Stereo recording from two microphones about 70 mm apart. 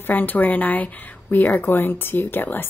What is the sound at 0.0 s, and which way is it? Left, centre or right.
Speech, left.